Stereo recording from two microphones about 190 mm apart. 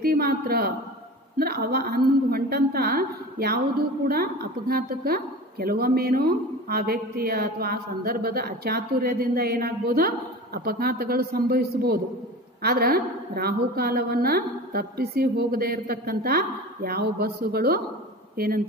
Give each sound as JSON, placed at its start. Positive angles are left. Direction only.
{"t": 0.0, "sound": "a woman's voice", "side_deg": -50}